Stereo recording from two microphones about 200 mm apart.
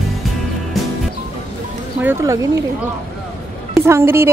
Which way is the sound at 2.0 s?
15° right (ahead or behind).